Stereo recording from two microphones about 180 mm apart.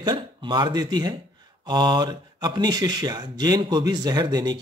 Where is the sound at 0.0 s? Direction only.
25° right (ahead or behind).